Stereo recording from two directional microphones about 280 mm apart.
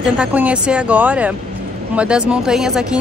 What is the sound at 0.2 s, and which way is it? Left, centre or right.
A woman's voice, centre.